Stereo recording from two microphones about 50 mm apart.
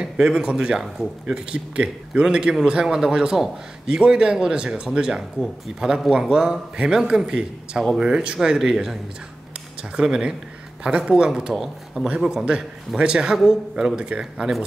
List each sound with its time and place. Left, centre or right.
0.0 s a man's voice: centre
9.9 s a man's voice: centre
11.5 s speech: centre
12.4 s a man's voice: centre